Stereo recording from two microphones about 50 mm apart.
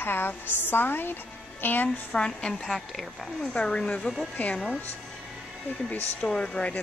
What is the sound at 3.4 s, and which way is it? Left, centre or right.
Speech, centre.